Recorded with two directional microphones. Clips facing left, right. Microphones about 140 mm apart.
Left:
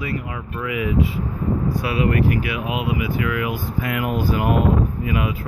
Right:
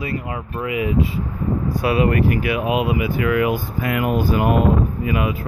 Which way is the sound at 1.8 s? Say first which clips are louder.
Right 4 dB; 45° right (ahead or behind).